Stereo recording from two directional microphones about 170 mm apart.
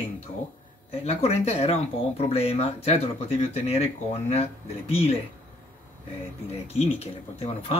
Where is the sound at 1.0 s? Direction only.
35° left (ahead or behind).